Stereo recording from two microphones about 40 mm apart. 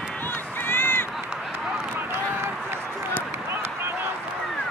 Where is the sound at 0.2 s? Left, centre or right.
Left.